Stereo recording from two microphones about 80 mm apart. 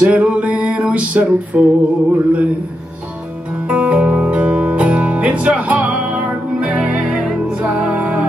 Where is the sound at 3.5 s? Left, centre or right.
Centre.